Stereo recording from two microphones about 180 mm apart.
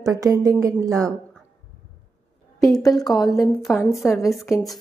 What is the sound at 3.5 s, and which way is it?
Speech, centre (ahead or behind).